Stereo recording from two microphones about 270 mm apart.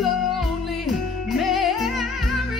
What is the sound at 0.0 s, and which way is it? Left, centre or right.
Music, centre.